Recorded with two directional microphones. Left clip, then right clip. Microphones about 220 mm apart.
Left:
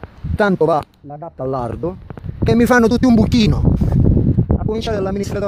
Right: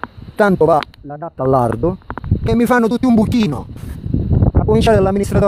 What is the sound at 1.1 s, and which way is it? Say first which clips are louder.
Speech: right 7 dB; 35° right (ahead or behind).